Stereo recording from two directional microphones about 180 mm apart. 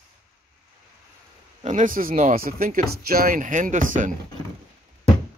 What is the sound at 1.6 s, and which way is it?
Speech, 45° right (ahead or behind).